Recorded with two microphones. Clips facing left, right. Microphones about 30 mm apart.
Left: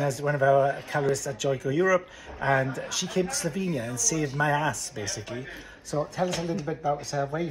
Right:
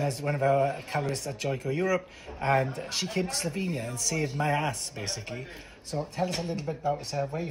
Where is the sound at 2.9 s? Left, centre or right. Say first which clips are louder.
Left 2 dB; right.